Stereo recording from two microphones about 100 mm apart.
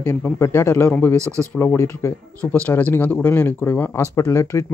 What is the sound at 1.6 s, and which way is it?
Speech, 25° left (ahead or behind).